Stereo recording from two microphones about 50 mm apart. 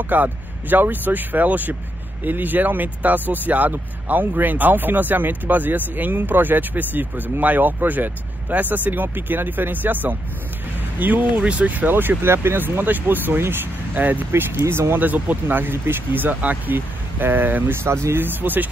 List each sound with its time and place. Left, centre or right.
0.0 s speech: right
12.6 s speech: right
13.9 s speech: right
14.3 s speech: right
15.0 s speech: right
15.4 s speech: right
17.8 s speech: right
18.2 s speech: right